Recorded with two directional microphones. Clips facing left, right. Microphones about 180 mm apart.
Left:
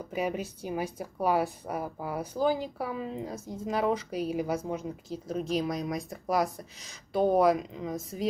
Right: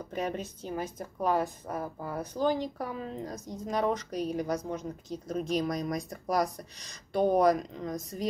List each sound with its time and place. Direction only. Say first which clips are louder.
0.1 s a woman's voice: left 2 dB; 10° left (ahead or behind)